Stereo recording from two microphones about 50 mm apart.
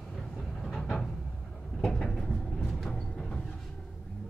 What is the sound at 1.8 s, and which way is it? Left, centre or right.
Cupboard open or close, centre.